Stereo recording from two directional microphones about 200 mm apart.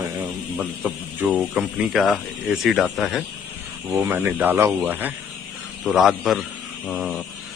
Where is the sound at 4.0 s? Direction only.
10° right (ahead or behind).